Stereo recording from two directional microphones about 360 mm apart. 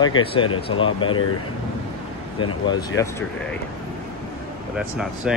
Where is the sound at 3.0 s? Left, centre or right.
Centre.